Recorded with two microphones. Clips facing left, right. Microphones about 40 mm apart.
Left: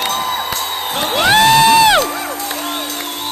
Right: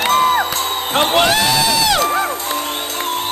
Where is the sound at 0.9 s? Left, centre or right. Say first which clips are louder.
Right 5 dB; right.